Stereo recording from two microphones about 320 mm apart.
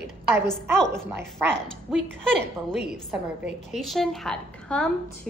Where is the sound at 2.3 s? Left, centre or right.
Right.